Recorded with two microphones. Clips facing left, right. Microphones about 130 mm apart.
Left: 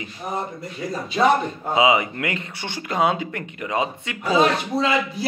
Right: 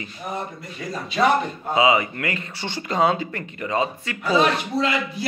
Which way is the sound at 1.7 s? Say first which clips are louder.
Even; 20° left (ahead or behind).